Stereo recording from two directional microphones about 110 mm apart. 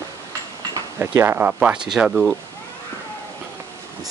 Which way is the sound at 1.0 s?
20° right (ahead or behind).